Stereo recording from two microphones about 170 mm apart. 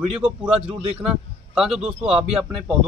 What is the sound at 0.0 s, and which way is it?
A man's voice, 35° right (ahead or behind).